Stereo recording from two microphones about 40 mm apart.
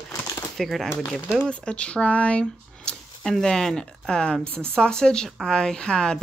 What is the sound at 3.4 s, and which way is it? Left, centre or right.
Speech, centre.